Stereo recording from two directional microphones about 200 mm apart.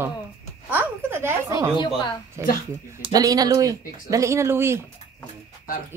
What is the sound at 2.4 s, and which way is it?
Speech, 15° right (ahead or behind).